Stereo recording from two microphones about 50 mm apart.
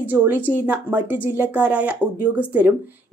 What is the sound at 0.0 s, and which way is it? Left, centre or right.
A woman's voice, right.